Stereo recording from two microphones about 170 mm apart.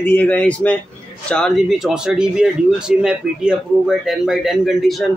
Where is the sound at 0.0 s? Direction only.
10° left (ahead or behind).